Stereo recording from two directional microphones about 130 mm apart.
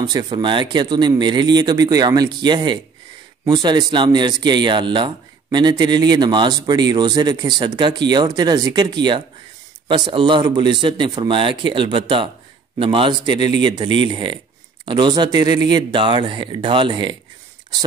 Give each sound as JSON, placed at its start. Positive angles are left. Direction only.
{"t": 0.0, "sound": "a man's voice", "side_deg": -30}